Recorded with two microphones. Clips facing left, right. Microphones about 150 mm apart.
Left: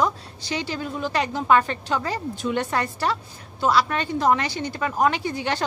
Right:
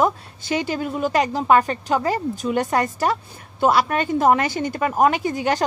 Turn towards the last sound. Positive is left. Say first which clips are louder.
# right 4 dB
turn(degrees=-45)  # may be behind; listen again after turning